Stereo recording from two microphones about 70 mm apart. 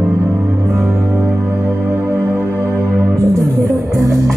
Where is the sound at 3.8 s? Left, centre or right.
Right.